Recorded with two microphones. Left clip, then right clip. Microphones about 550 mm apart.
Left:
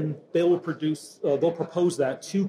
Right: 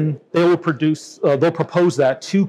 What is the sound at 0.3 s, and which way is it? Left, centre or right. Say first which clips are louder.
A man's voice: right 7 dB; right.